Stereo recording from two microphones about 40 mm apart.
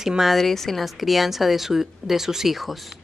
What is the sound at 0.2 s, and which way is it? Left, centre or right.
Speech, centre.